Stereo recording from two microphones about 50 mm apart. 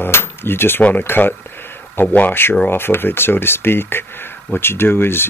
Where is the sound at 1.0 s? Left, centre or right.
Left.